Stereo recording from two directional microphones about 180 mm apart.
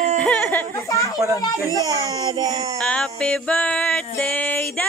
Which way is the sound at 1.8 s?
20° right (ahead or behind).